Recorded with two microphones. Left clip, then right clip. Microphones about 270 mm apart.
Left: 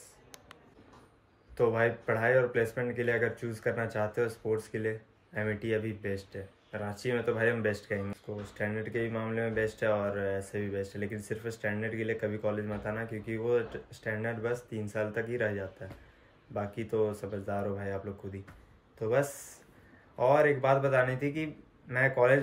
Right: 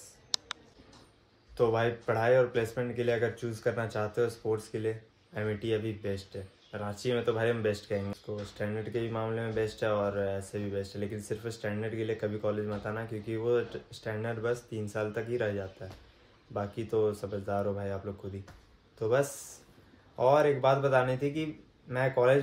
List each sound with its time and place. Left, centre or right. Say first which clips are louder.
1.7 s speech: left 1 dB; centre
16.5 s speech: right 1 dB; centre
18.9 s speech: right 1 dB; centre